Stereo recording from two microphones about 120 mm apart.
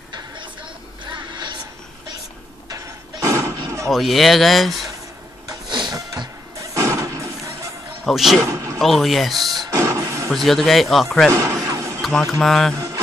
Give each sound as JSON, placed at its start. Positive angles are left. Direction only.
{"t": 1.1, "sound": "a sound", "side_deg": -40}
{"t": 2.7, "sound": "a sound", "side_deg": -25}
{"t": 3.8, "sound": "speech", "side_deg": 0}
{"t": 5.5, "sound": "music", "side_deg": -40}
{"t": 8.0, "sound": "speech", "side_deg": 0}
{"t": 8.4, "sound": "a sound", "side_deg": -25}
{"t": 8.7, "sound": "speech", "side_deg": 0}
{"t": 9.7, "sound": "music", "side_deg": -25}
{"t": 10.3, "sound": "speech", "side_deg": 0}
{"t": 11.3, "sound": "music", "side_deg": -25}
{"t": 12.3, "sound": "speech", "side_deg": 0}
{"t": 12.7, "sound": "mantra", "side_deg": -25}